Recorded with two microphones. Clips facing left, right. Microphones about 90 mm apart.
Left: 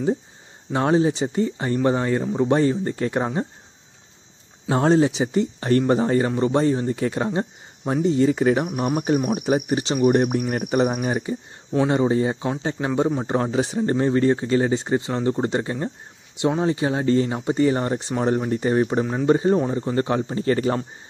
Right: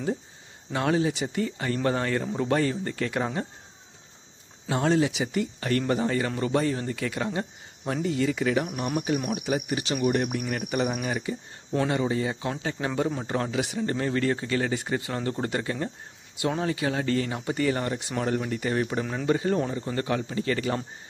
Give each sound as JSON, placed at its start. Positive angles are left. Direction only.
{"t": 0.7, "sound": "speech", "side_deg": 30}
{"t": 4.6, "sound": "speech", "side_deg": 35}